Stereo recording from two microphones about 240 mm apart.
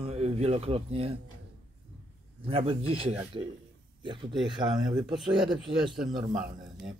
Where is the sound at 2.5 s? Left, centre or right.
Right.